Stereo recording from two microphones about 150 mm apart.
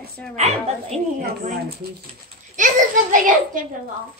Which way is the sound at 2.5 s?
60° right (ahead or behind).